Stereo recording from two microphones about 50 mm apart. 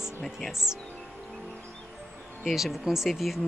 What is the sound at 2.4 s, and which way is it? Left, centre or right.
Speech, centre.